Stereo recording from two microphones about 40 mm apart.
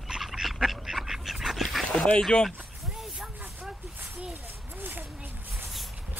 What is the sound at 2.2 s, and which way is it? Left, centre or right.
Speech, centre.